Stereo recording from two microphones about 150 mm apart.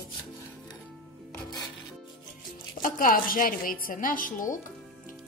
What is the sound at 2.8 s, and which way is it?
A woman's voice, 65° left (ahead or behind).